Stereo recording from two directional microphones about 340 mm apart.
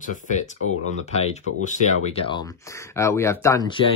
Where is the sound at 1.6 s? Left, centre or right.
Centre.